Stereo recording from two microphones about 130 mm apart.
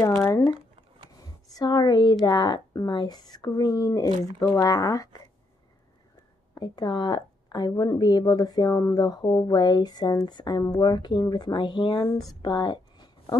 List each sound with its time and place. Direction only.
0.0 s a woman's voice: 25° left (ahead or behind)
6.5 s a woman's voice: 35° left (ahead or behind)
12.3 s a sound: 35° left (ahead or behind)